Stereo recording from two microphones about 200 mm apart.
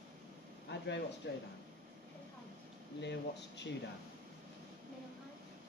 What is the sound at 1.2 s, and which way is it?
Speech, 60° left (ahead or behind).